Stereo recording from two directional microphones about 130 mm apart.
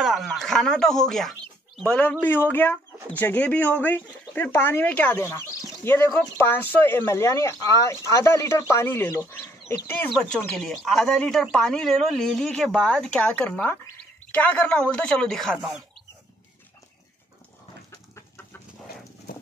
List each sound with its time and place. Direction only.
0.0 s speech: centre (ahead or behind); by 9.8 s 15° left (ahead or behind)
10.0 s speech: 5° left (ahead or behind)